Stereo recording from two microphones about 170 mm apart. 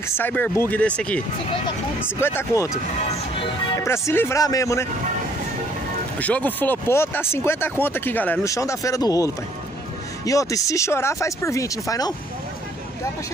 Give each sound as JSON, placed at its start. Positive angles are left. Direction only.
{"t": 0.1, "sound": "speech", "side_deg": 10}
{"t": 6.1, "sound": "speech", "side_deg": 10}